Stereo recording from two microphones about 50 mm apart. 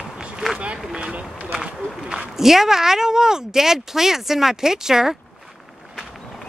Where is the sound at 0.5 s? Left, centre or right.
Centre.